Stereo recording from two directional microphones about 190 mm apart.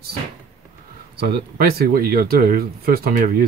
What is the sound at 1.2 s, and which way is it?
Speech, 50° right (ahead or behind).